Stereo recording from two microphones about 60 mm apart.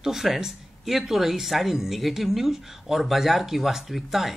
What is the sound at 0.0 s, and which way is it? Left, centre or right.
Speech, centre.